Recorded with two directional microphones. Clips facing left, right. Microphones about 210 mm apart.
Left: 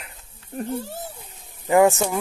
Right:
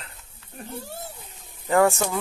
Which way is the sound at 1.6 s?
15° left (ahead or behind).